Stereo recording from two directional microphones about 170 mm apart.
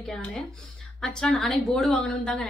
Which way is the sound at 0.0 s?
5° left (ahead or behind).